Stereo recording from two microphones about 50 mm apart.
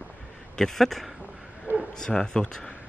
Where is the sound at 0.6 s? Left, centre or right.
Centre.